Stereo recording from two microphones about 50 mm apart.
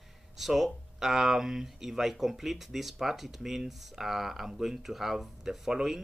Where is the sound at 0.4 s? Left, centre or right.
Centre.